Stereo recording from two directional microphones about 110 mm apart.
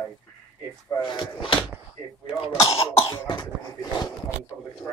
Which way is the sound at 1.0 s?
40° left (ahead or behind).